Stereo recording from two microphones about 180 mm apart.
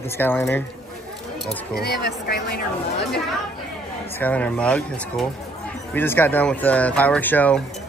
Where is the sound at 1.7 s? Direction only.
60° left (ahead or behind).